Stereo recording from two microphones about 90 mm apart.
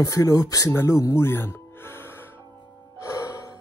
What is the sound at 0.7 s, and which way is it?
Music, 35° left (ahead or behind).